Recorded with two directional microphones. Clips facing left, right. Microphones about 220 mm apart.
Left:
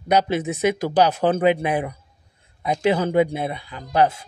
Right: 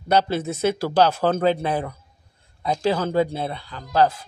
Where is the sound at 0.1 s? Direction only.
15° left (ahead or behind).